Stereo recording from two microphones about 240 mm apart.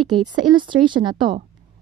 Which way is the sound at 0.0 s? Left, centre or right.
Centre.